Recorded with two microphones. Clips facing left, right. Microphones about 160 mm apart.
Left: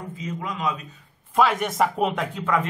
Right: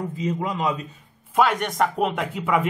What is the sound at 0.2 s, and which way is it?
Speech, 30° right (ahead or behind).